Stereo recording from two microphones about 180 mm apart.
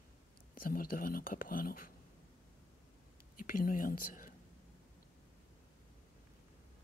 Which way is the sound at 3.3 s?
50° left (ahead or behind).